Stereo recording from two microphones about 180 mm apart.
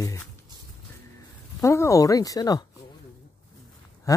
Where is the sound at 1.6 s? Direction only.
15° left (ahead or behind).